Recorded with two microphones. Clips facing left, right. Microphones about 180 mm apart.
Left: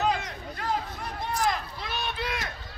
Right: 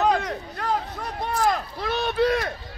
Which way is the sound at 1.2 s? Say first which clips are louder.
Right 5 dB; 55° right (ahead or behind).